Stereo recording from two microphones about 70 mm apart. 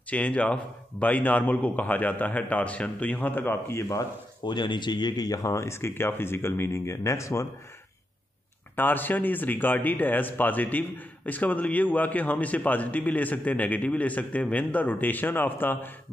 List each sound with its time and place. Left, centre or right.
0.1 s speech: centre; by 4.0 s left
4.5 s speech: left
8.7 s speech: left